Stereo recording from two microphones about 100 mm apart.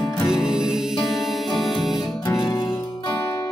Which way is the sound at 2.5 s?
30° left (ahead or behind).